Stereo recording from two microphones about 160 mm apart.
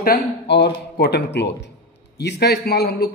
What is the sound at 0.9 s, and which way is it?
Speech, 90° left.